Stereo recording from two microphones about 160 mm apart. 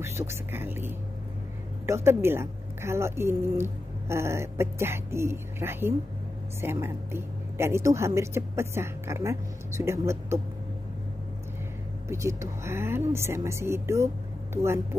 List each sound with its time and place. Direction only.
0.0 s a woman's voice: 15° right (ahead or behind)
12.1 s a woman's voice: 20° right (ahead or behind)